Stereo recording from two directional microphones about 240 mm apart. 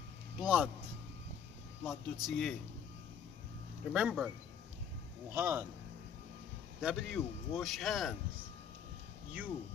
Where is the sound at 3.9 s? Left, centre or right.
Centre.